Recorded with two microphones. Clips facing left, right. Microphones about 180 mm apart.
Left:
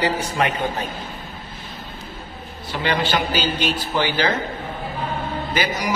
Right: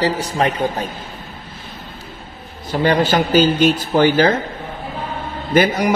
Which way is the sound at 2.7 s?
45° right (ahead or behind).